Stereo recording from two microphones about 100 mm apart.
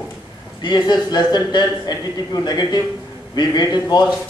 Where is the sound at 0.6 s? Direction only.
45° left (ahead or behind).